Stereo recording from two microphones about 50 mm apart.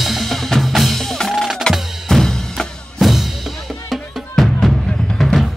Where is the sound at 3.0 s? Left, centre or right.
Centre.